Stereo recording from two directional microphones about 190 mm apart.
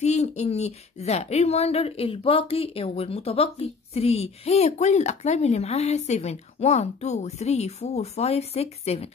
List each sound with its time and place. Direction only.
0.0 s speech: 35° left (ahead or behind)